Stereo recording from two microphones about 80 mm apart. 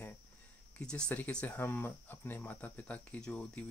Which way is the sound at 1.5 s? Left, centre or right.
Left.